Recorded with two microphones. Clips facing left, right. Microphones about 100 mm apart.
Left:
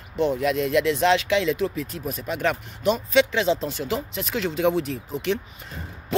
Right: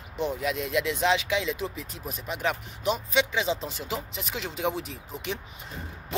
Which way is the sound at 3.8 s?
10° right (ahead or behind).